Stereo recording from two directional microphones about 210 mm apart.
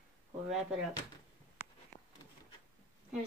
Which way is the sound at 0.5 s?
Centre (ahead or behind).